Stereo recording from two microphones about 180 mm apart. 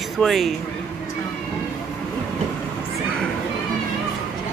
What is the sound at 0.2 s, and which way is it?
Speech, centre (ahead or behind).